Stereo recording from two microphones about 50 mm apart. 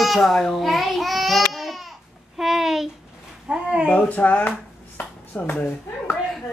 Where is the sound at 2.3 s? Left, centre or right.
Centre.